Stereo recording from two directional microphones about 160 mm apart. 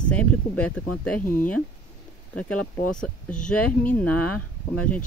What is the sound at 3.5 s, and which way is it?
Speech, 5° left (ahead or behind).